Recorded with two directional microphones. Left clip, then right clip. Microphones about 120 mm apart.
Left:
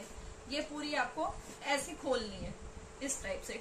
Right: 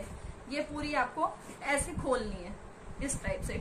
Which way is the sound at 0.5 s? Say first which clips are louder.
Right 3 dB; 5° left (ahead or behind).